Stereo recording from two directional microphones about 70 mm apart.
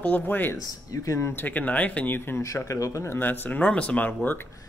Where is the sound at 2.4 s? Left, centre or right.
Left.